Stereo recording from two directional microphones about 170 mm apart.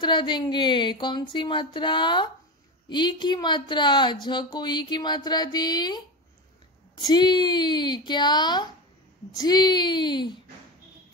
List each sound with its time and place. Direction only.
0.0 s a woman's voice: 25° left (ahead or behind)
7.1 s a woman's voice: 25° left (ahead or behind)